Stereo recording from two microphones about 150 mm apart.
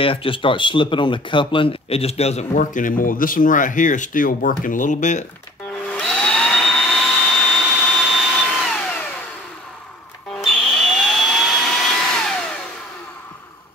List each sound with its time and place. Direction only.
0.0 s speech: 35° left (ahead or behind); by 5.2 s 55° left (ahead or behind)
5.7 s a sound: 5° left (ahead or behind)
10.3 s vacuum cleaner: centre (ahead or behind)